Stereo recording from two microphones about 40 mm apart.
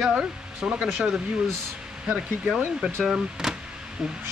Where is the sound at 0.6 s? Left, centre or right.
Right.